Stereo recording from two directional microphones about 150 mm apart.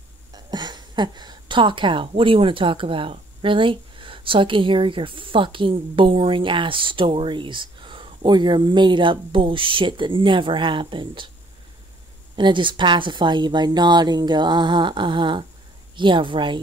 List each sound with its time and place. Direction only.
0.3 s a woman's voice: 30° right (ahead or behind)
12.4 s a woman's voice: 30° right (ahead or behind)